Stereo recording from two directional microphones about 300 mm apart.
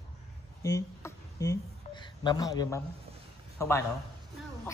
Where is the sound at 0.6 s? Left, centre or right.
Centre.